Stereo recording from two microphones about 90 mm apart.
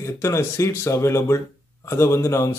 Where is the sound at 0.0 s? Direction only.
35° left (ahead or behind).